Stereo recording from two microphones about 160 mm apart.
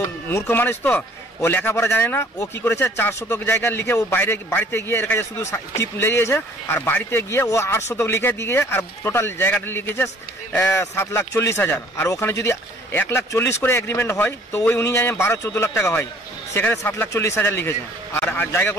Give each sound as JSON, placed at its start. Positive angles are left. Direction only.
{"t": 0.0, "sound": "speech", "side_deg": 15}